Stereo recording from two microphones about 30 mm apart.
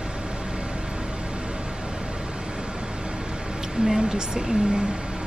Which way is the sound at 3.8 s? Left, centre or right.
Right.